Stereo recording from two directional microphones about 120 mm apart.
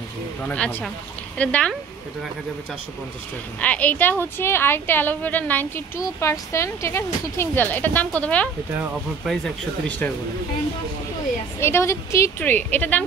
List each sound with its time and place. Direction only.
0.4 s speech: 10° left (ahead or behind)
3.6 s speech: 10° left (ahead or behind)
5.9 s speech: 25° left (ahead or behind)
9.2 s speech: centre (ahead or behind)
9.8 s speech: 15° left (ahead or behind)
11.6 s speech: 25° left (ahead or behind)